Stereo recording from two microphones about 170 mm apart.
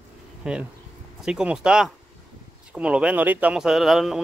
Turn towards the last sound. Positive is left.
turn(degrees=0)  # may be behind; listen again after turning